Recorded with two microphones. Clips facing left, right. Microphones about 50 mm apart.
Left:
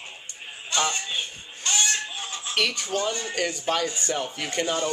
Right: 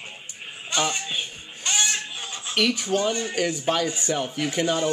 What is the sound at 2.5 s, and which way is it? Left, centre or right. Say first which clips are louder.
Speech: right 4 dB; centre.